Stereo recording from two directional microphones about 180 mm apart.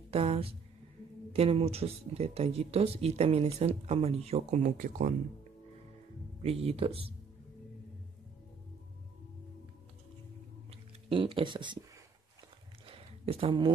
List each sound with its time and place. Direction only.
0.1 s speech: 35° right (ahead or behind)
6.4 s speech: 35° right (ahead or behind)
10.7 s speech: 30° right (ahead or behind)
12.8 s a sound: 30° right (ahead or behind)